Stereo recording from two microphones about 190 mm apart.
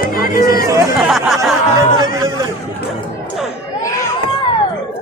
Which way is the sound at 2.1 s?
15° right (ahead or behind).